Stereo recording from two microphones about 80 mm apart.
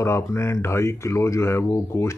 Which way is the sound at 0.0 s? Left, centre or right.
Left.